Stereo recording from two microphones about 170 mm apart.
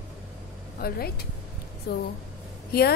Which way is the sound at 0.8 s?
65° left (ahead or behind).